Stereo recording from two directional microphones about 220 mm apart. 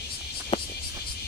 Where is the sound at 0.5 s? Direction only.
25° left (ahead or behind).